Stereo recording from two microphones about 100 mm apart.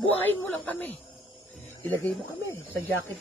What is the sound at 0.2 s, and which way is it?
Speech, 20° left (ahead or behind).